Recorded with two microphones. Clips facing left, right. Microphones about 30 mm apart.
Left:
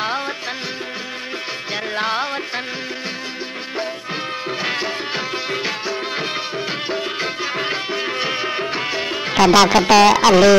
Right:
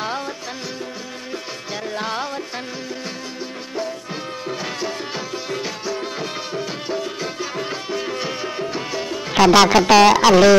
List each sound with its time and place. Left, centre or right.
1.7 s music: left
4.5 s music: left
9.3 s speech: centre